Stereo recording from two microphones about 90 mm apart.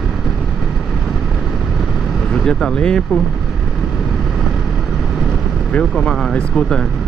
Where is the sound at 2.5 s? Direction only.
5° left (ahead or behind).